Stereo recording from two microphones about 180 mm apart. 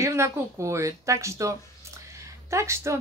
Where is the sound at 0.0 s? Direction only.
15° right (ahead or behind).